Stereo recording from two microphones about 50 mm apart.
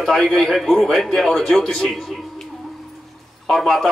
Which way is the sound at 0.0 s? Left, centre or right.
Centre.